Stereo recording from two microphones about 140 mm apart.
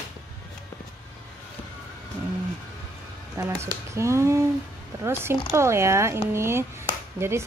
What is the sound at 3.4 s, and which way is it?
A woman's voice, 20° right (ahead or behind).